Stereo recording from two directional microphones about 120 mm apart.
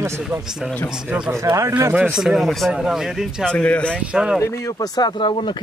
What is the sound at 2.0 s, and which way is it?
Speech, 5° right (ahead or behind).